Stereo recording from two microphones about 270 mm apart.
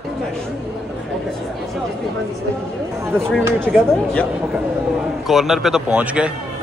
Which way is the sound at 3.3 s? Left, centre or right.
Centre.